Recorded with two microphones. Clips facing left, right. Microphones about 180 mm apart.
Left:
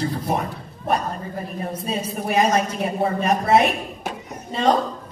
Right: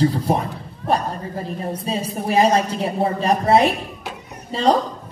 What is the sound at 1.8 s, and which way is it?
Speech, 30° right (ahead or behind).